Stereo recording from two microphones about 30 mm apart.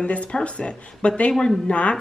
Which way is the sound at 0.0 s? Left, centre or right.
Left.